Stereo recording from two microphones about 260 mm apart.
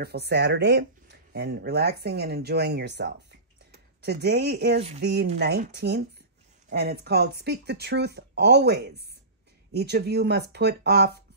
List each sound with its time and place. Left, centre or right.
0.0 s speech: right